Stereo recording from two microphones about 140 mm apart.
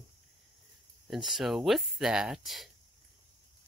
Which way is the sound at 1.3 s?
Centre (ahead or behind).